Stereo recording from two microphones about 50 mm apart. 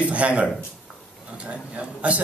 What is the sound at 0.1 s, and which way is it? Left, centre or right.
Speech, right.